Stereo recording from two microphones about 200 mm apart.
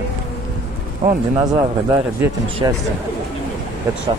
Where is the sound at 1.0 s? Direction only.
20° right (ahead or behind).